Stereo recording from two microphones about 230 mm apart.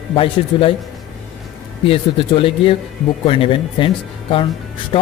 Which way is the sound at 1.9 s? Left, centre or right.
Left.